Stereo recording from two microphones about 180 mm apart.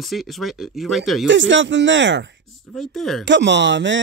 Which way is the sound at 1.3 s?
90° right.